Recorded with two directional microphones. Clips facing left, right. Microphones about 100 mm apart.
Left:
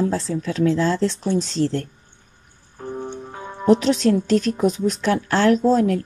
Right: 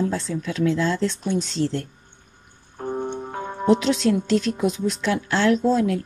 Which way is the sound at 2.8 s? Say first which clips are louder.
Right 3 dB; 55° right (ahead or behind).